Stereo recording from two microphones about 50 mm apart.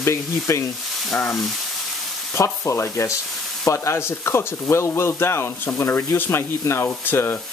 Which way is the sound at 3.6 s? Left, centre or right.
Left.